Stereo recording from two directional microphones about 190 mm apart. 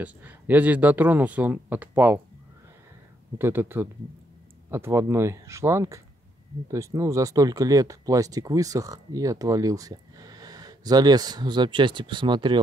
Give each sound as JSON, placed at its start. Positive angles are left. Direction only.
{"t": 0.0, "sound": "speech", "side_deg": -10}
{"t": 3.3, "sound": "speech", "side_deg": -10}